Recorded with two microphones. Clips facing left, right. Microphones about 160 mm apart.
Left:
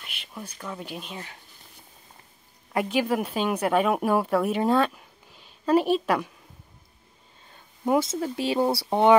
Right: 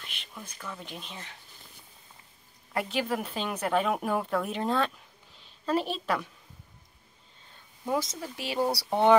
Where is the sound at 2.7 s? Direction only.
15° left (ahead or behind).